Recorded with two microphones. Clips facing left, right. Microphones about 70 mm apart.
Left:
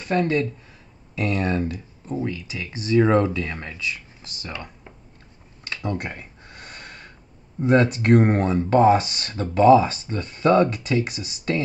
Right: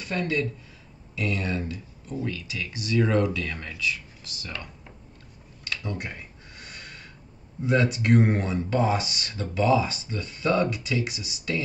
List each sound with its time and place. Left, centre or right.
0.0 s speech: left
2.2 s speech: left
5.9 s a sound: left
7.6 s speech: left